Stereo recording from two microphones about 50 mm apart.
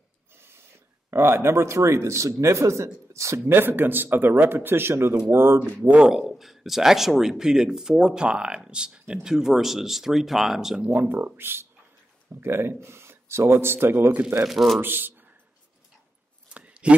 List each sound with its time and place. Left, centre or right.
0.4 s a sound: right
1.1 s speech: right
3.4 s speech: right
6.0 s speech: centre
10.8 s speech: right
14.2 s speech: centre
14.8 s speech: right
16.5 s a sound: right